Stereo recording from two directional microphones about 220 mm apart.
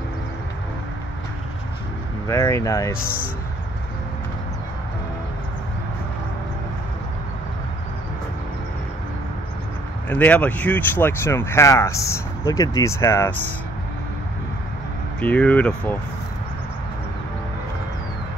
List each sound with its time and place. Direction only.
2.2 s speech: 15° left (ahead or behind)
3.0 s speech: 40° left (ahead or behind)
10.0 s speech: 5° left (ahead or behind)
15.1 s speech: 5° left (ahead or behind)